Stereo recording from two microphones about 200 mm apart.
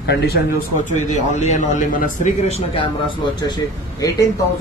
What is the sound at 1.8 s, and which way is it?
Speech, 40° left (ahead or behind).